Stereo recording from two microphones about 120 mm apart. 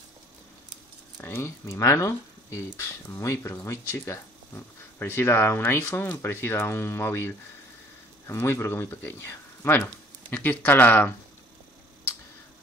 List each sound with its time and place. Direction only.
1.2 s speech: 20° left (ahead or behind)